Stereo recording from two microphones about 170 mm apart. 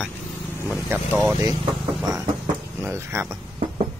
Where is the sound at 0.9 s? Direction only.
5° right (ahead or behind).